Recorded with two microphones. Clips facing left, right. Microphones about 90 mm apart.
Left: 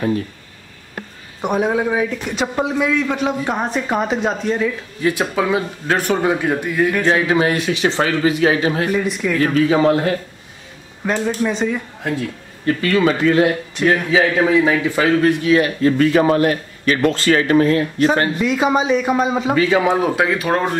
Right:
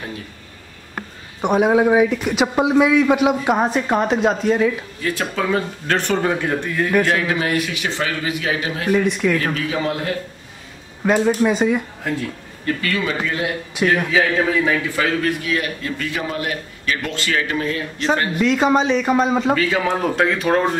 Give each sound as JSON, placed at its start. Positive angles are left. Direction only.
{"t": 1.4, "sound": "a man's voice", "side_deg": -5}
{"t": 5.0, "sound": "speech", "side_deg": 15}
{"t": 7.1, "sound": "a man's voice", "side_deg": 25}
{"t": 8.9, "sound": "speech", "side_deg": 0}
{"t": 9.4, "sound": "a man's voice", "side_deg": 35}
{"t": 11.1, "sound": "a man's voice", "side_deg": -10}
{"t": 13.0, "sound": "a man's voice", "side_deg": 50}
{"t": 13.8, "sound": "a man's voice", "side_deg": -10}
{"t": 14.1, "sound": "a man's voice", "side_deg": 15}
{"t": 15.8, "sound": "a man's voice", "side_deg": 45}
{"t": 18.4, "sound": "speech", "side_deg": 5}
{"t": 19.5, "sound": "speech", "side_deg": 15}